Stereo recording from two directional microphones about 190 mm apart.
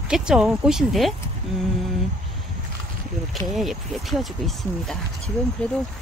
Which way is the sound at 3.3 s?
Centre (ahead or behind).